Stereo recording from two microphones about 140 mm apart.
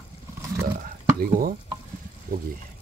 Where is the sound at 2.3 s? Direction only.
80° right.